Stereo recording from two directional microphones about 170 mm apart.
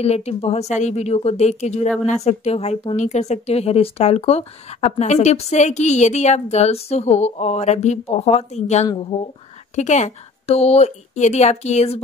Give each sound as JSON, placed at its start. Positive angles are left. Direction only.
{"t": 0.0, "sound": "speech", "side_deg": 35}
{"t": 8.8, "sound": "speech", "side_deg": 30}
{"t": 9.8, "sound": "speech", "side_deg": 45}